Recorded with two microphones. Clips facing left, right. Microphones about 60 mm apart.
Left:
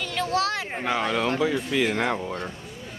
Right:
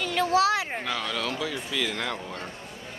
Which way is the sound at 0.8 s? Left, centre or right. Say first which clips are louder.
Left 6 dB; left.